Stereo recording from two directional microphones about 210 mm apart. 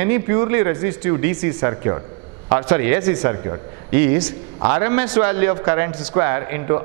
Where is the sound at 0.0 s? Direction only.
15° right (ahead or behind).